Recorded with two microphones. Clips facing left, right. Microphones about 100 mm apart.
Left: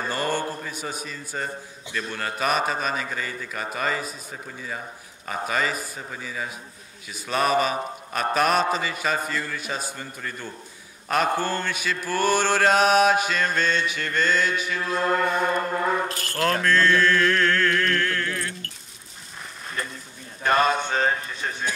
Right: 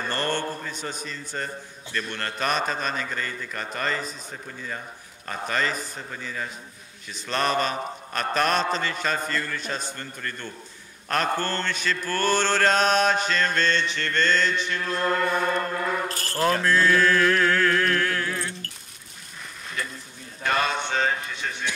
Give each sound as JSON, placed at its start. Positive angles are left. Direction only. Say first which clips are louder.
{"t": 0.1, "sound": "mantra", "louder": "left 1 dB", "side_deg": 10}
{"t": 16.1, "sound": "speech", "louder": "even", "side_deg": -35}
{"t": 16.6, "sound": "chant", "louder": "left 2 dB", "side_deg": -10}
{"t": 18.3, "sound": "keys jangling", "louder": "even", "side_deg": -25}
{"t": 19.8, "sound": "a sound", "louder": "left 1 dB", "side_deg": 40}
{"t": 20.4, "sound": "speech", "louder": "left 4 dB", "side_deg": 40}